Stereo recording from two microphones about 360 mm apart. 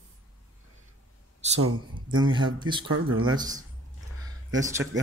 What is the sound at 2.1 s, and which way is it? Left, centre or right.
Speech, centre.